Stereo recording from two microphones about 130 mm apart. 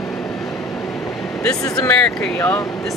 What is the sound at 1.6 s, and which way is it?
Speech, 25° left (ahead or behind).